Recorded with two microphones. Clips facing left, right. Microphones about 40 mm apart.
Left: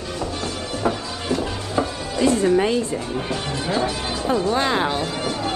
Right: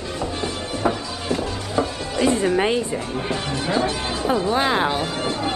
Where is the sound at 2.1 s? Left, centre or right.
Centre.